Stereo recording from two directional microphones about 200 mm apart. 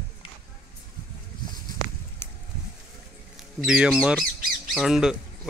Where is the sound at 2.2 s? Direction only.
10° left (ahead or behind).